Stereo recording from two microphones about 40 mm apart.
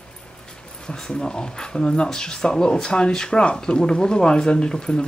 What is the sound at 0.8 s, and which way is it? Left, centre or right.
Speech, left.